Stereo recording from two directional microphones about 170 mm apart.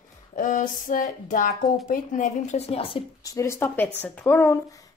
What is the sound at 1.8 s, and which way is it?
Speech, 50° left (ahead or behind).